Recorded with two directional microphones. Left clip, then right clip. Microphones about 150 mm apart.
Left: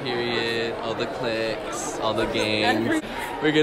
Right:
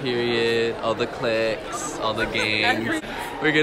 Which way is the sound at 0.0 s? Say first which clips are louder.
Right 3 dB; centre (ahead or behind).